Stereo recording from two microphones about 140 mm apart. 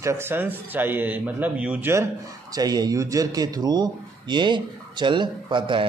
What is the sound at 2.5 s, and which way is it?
Speech, 30° right (ahead or behind).